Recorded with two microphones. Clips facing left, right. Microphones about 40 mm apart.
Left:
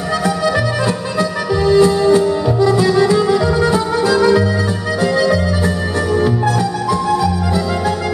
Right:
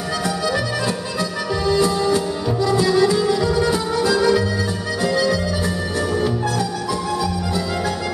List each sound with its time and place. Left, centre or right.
1.5 s music: centre